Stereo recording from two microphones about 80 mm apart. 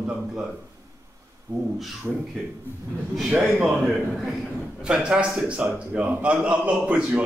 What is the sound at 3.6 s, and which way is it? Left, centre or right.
A man's voice, centre.